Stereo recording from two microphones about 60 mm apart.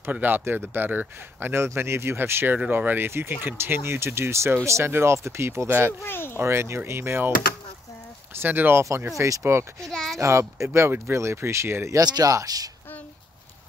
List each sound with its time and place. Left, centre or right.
0.1 s speech: right
2.5 s speech: right
6.0 s speech: left
6.3 s speech: right
8.4 s speech: right
9.1 s speech: right
9.8 s a child's voice: centre
10.1 s speech: right
11.9 s speech: right